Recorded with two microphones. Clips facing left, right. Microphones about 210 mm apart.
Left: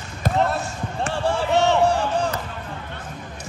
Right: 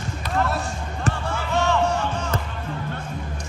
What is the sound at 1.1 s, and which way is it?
Basketball bounce, 30° left (ahead or behind).